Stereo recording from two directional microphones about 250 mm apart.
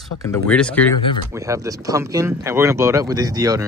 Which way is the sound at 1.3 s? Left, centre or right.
Centre.